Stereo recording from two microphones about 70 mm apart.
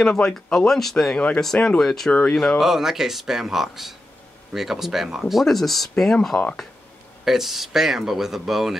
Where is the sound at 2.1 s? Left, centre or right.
Left.